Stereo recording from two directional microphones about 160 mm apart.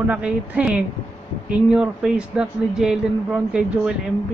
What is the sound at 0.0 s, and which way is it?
Speech, 5° right (ahead or behind).